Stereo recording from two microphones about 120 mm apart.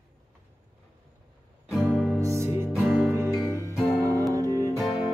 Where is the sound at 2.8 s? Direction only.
5° right (ahead or behind).